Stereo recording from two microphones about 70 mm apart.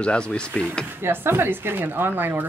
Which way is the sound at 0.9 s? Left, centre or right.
Right.